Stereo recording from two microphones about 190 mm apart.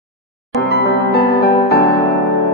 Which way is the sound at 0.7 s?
60° left (ahead or behind).